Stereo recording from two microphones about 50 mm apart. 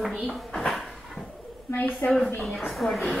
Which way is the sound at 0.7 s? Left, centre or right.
Centre.